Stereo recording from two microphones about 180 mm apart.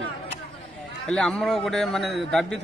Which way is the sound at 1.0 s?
5° left (ahead or behind).